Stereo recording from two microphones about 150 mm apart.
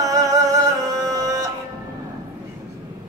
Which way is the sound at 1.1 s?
25° right (ahead or behind).